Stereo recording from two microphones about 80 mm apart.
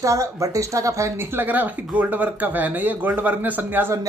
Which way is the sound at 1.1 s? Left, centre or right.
Right.